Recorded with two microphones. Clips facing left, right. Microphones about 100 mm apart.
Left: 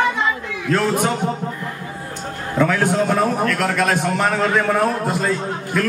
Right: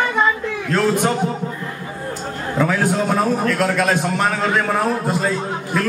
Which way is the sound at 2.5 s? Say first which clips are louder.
Left 1 dB; 5° right (ahead or behind).